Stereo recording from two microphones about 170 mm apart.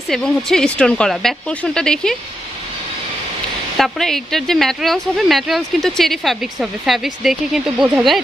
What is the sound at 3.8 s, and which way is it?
Speech, centre (ahead or behind).